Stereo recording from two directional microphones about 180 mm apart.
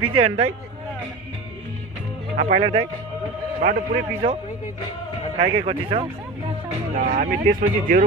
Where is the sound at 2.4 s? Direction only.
45° right (ahead or behind).